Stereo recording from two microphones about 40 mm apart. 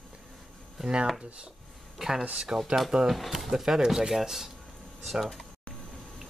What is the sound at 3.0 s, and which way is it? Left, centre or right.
Speech, centre.